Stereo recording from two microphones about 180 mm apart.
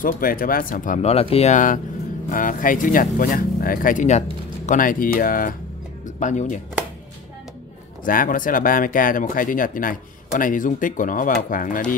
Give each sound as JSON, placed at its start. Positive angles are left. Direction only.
{"t": 0.0, "sound": "speech", "side_deg": 55}
{"t": 8.0, "sound": "speech", "side_deg": 50}